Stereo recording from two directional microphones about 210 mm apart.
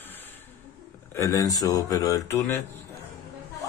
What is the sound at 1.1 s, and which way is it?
Speech, 15° left (ahead or behind).